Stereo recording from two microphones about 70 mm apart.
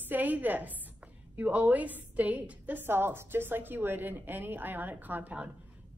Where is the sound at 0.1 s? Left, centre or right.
Right.